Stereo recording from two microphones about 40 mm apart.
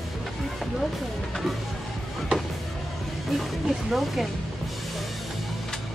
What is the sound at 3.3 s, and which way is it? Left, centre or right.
Music, centre.